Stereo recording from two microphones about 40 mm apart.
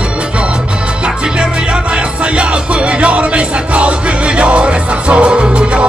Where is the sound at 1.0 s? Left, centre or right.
Right.